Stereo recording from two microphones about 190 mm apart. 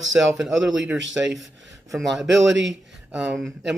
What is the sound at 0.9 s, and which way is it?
Speech, 75° right (ahead or behind).